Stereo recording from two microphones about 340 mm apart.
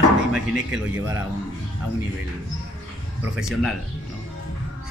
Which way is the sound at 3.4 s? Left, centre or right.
Centre.